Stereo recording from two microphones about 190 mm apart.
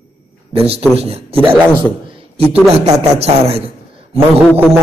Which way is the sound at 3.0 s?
35° right (ahead or behind).